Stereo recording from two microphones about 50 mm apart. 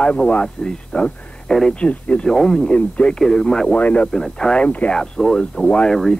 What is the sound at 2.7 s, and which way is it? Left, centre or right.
Speech, left.